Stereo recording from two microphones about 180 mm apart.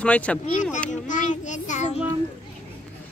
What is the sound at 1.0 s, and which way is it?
Child singing, 45° left (ahead or behind).